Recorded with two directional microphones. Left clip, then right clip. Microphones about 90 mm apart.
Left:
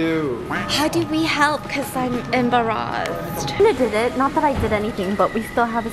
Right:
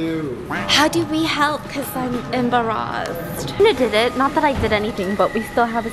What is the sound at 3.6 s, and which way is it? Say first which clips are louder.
Speech: right 1 dB; 20° left (ahead or behind).